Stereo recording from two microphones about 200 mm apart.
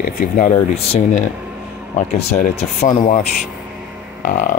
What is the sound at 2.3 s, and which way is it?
Speech, 35° left (ahead or behind).